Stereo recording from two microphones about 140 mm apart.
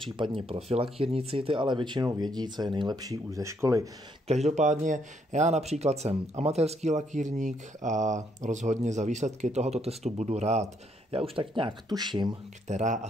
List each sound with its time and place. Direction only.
0.0 s speech: 35° right (ahead or behind); by 3.9 s 20° right (ahead or behind)
4.3 s speech: 55° right (ahead or behind); by 12.3 s 30° right (ahead or behind)
12.6 s speech: 60° right (ahead or behind)